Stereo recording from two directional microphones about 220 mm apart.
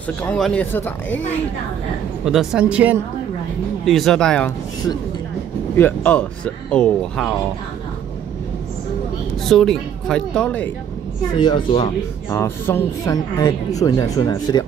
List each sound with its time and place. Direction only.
0.2 s speech: 5° left (ahead or behind)
2.2 s speech: centre (ahead or behind)
5.8 s speech: 10° left (ahead or behind)
9.4 s speech: centre (ahead or behind)
11.3 s speech: 20° left (ahead or behind)